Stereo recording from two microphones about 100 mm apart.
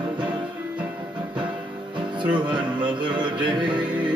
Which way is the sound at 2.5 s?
55° right (ahead or behind).